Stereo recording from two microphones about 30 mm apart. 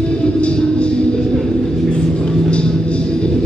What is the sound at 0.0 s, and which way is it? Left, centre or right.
Music, left.